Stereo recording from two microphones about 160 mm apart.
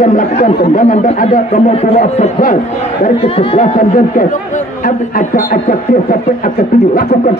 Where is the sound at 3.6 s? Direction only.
55° left (ahead or behind).